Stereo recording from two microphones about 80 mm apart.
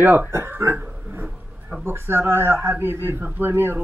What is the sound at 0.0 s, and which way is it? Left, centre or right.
Speech, right.